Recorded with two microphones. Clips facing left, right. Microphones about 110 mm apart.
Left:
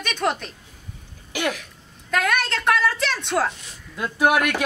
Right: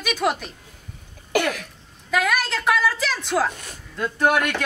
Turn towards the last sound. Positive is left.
turn(degrees=10)  # may be behind; listen again after turning